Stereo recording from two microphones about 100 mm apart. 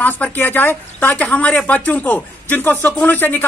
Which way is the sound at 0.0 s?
20° left (ahead or behind).